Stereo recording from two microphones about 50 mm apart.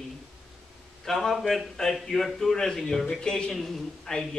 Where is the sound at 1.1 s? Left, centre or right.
Centre.